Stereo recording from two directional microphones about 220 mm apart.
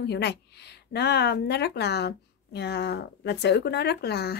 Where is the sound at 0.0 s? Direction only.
50° left (ahead or behind).